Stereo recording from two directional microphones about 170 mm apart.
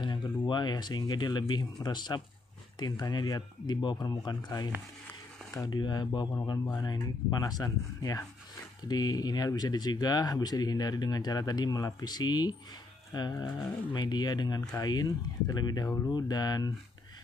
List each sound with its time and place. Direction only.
0.0 s speech: 25° left (ahead or behind)